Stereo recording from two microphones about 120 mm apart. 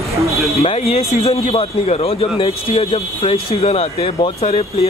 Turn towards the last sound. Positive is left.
turn(degrees=55)  # may be behind; listen again after turning